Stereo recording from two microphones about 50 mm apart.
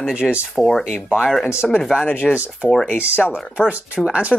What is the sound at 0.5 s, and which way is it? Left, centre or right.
Speech, centre.